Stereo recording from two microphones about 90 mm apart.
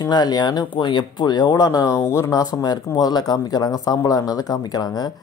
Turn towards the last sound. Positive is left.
turn(degrees=45)  # may be behind; listen again after turning